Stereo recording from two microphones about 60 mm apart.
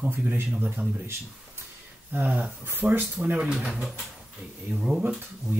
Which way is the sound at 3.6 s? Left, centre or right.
Centre.